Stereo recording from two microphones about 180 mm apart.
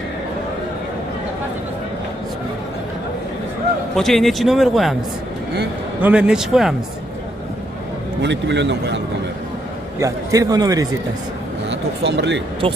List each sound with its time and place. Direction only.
3.9 s a man's voice: centre (ahead or behind)
5.9 s a man's voice: 5° right (ahead or behind)
8.2 s a man's voice: 75° right (ahead or behind)
9.9 s a man's voice: 20° right (ahead or behind)
11.7 s speech: 75° right (ahead or behind)